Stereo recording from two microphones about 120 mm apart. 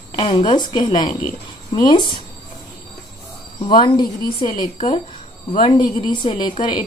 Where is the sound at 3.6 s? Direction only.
40° left (ahead or behind).